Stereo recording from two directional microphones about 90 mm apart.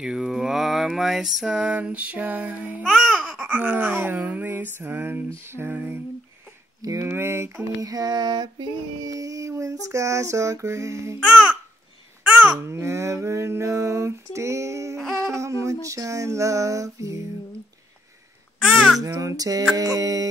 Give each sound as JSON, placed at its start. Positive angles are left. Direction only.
{"t": 0.0, "sound": "mantra", "side_deg": -5}
{"t": 2.8, "sound": "speech", "side_deg": 5}
{"t": 3.2, "sound": "a sound", "side_deg": -5}
{"t": 6.8, "sound": "a sound", "side_deg": -40}
{"t": 7.1, "sound": "a sound", "side_deg": -30}
{"t": 7.8, "sound": "female singing", "side_deg": -45}
{"t": 11.1, "sound": "mantra", "side_deg": -10}
{"t": 12.2, "sound": "babbling", "side_deg": -15}
{"t": 12.6, "sound": "female singing", "side_deg": -35}
{"t": 18.7, "sound": "babbling", "side_deg": -5}
{"t": 18.9, "sound": "female singing", "side_deg": -35}
{"t": 19.7, "sound": "a sound", "side_deg": -45}